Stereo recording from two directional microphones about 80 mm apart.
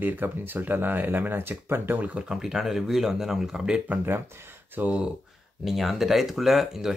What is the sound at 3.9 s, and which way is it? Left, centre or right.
Speech, right.